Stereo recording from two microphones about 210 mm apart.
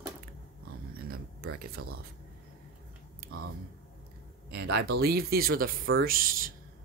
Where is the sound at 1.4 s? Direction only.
50° right (ahead or behind).